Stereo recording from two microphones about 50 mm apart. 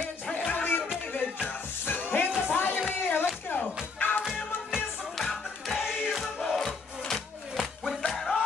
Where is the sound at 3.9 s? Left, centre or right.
Left.